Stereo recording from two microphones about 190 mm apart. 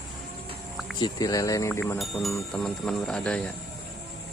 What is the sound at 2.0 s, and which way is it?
Speech, centre (ahead or behind).